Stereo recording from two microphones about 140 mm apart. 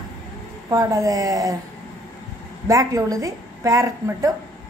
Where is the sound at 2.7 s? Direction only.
25° right (ahead or behind).